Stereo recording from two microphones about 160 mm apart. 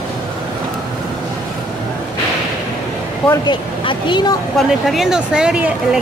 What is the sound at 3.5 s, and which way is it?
Speech, 30° left (ahead or behind).